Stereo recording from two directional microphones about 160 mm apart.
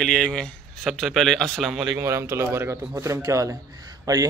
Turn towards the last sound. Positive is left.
turn(degrees=-25)  # may be behind; listen again after turning